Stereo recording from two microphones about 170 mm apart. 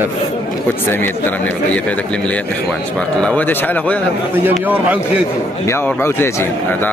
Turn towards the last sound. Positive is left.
turn(degrees=10)  # may be behind; listen again after turning